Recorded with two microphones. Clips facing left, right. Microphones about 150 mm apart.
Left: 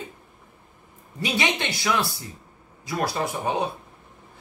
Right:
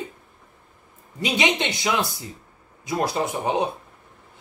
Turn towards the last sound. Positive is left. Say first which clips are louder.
# right 2 dB
turn(degrees=-20)  # may be behind; listen again after turning